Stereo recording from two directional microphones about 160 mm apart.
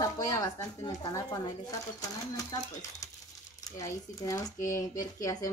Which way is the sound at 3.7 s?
20° left (ahead or behind).